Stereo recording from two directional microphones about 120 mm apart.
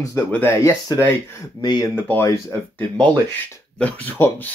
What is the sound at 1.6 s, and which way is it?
Speech, 35° left (ahead or behind).